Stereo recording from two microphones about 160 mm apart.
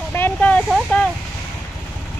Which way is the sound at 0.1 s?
10° left (ahead or behind).